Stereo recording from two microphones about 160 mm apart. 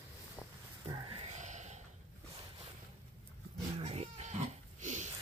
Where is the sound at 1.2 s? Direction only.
45° right (ahead or behind).